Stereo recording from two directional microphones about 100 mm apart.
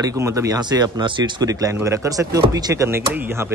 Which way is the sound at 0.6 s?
45° right (ahead or behind).